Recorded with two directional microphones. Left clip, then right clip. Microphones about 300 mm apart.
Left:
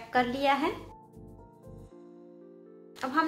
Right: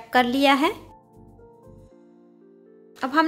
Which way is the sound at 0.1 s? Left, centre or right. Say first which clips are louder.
Right 8 dB; right.